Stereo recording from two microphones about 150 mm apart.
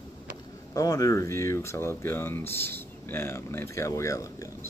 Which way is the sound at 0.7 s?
25° left (ahead or behind).